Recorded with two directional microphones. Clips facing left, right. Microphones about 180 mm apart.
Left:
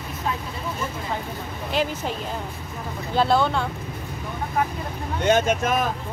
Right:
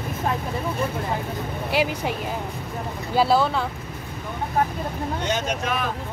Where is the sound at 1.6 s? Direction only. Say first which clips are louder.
Right 1 dB; 10° right (ahead or behind).